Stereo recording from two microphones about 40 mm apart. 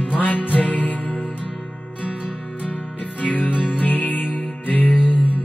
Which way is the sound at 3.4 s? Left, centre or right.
Right.